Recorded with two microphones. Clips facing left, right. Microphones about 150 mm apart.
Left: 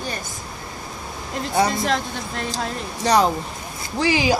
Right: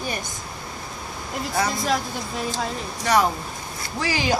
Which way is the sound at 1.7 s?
Centre (ahead or behind).